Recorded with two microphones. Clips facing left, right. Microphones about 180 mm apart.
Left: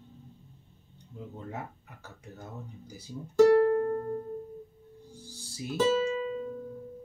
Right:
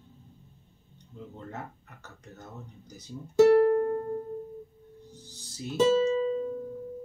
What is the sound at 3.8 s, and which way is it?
Music, 15° right (ahead or behind).